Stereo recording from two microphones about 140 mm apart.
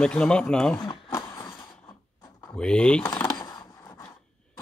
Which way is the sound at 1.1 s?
25° left (ahead or behind).